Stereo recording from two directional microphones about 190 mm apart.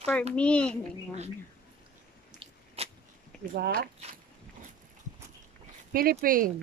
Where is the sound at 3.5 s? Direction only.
60° right (ahead or behind).